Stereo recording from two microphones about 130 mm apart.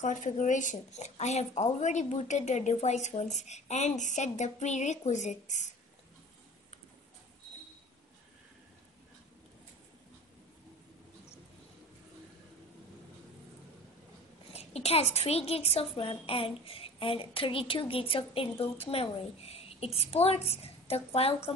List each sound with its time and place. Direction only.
0.0 s speech: 75° left (ahead or behind)
14.5 s a woman's voice: 55° left (ahead or behind)